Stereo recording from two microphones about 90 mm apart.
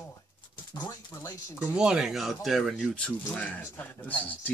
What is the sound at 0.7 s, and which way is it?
Speech, 45° left (ahead or behind).